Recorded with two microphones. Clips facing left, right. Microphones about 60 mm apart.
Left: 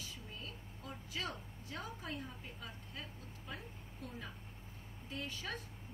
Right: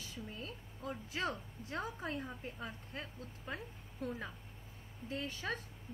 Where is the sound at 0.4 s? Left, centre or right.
Right.